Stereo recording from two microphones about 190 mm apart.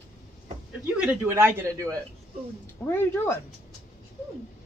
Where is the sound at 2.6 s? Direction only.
10° left (ahead or behind).